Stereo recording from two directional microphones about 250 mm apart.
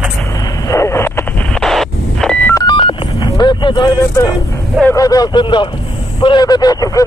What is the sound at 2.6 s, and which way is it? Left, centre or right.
Telephone dialing, centre.